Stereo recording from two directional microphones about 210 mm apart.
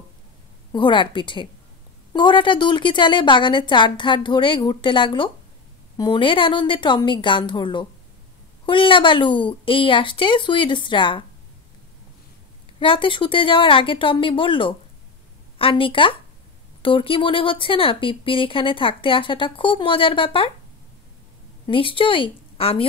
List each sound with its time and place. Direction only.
0.7 s speech: 20° left (ahead or behind)
12.7 s speech: 25° left (ahead or behind)
21.6 s a woman's voice: 25° left (ahead or behind)